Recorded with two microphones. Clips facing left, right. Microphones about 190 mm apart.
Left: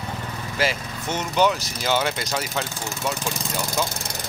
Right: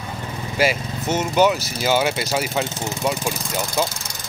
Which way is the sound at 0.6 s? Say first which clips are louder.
Right 5 dB; 10° right (ahead or behind).